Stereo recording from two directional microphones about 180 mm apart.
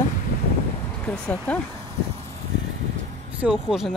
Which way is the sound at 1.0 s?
10° left (ahead or behind).